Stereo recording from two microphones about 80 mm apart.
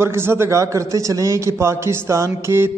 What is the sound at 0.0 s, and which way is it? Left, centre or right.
A man's voice, right.